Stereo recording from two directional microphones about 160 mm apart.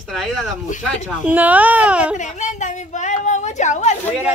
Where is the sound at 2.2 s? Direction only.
50° left (ahead or behind).